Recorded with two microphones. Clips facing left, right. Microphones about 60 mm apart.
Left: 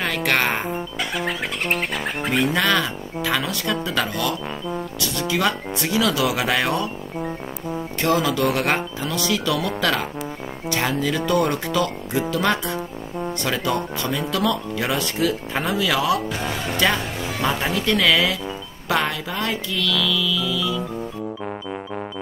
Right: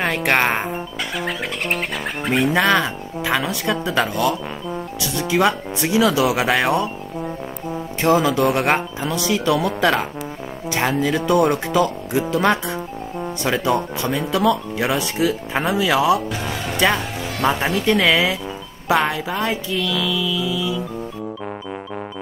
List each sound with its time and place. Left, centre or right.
0.0 s speech: right
1.1 s speech: centre
2.5 s speech: right
8.0 s speech: right
16.3 s speech: centre
16.7 s speech: centre
17.4 s speech: right
17.9 s speech: centre